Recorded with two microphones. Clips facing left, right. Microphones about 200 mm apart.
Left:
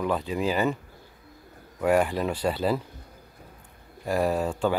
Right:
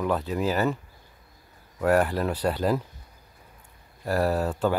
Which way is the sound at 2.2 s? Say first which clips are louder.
Right 1 dB; 10° right (ahead or behind).